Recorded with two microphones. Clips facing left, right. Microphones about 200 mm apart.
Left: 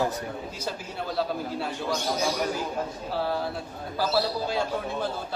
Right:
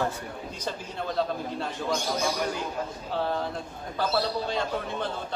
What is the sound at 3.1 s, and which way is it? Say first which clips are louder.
A man's voice: right 1 dB; 5° left (ahead or behind).